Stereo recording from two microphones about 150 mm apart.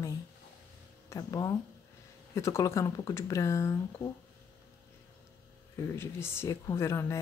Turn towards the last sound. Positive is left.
turn(degrees=20)  # may be behind; listen again after turning